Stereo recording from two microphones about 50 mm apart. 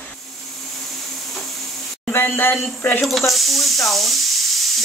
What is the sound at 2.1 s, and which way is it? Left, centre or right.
Speech, left.